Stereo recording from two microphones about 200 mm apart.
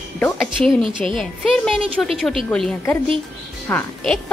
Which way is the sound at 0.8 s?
25° right (ahead or behind).